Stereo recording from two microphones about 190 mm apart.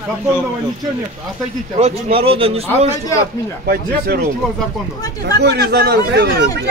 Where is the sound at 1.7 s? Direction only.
35° right (ahead or behind).